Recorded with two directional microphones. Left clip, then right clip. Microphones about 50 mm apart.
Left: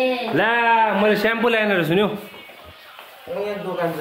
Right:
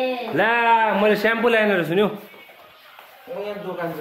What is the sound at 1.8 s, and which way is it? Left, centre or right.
Speech, centre.